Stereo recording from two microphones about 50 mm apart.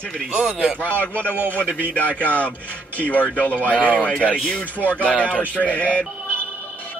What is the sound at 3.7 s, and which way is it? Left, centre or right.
Speech, right.